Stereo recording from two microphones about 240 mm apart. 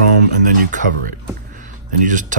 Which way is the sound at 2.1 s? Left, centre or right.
Right.